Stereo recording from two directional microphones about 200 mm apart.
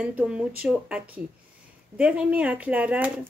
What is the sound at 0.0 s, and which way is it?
Speech, 5° right (ahead or behind).